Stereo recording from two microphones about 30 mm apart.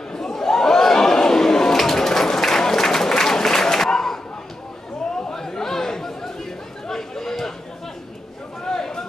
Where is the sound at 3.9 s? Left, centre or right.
Centre.